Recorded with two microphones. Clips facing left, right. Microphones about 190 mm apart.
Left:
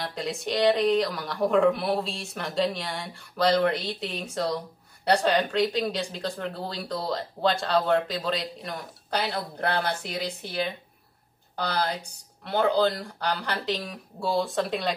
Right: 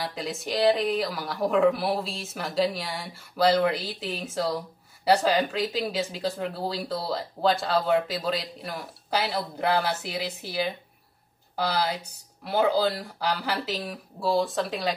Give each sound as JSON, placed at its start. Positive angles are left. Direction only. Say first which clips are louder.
{"t": 0.0, "sound": "speech", "louder": "left 1 dB", "side_deg": 0}